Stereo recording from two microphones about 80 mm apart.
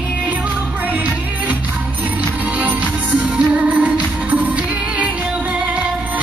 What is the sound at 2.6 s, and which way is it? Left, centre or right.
Music, centre.